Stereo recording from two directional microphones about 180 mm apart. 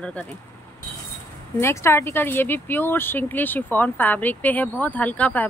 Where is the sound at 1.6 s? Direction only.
15° left (ahead or behind).